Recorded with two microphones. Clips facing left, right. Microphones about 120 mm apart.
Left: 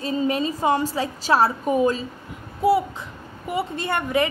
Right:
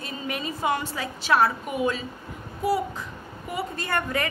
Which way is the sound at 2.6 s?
25° left (ahead or behind).